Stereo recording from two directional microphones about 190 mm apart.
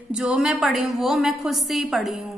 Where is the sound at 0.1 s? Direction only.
5° right (ahead or behind).